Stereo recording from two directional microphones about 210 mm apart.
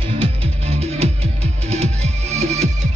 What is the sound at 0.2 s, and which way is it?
Music, 30° right (ahead or behind).